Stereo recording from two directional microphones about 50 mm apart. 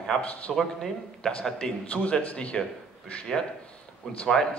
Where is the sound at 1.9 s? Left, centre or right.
Left.